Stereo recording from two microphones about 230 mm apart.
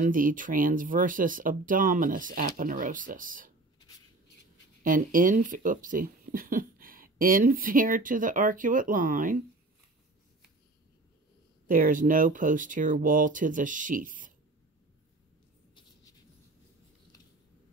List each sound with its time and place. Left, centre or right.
0.0 s speech: right
4.8 s speech: right
11.6 s speech: right